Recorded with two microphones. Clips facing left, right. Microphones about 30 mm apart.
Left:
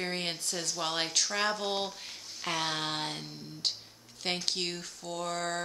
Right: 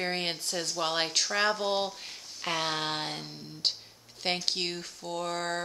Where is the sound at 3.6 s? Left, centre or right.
Right.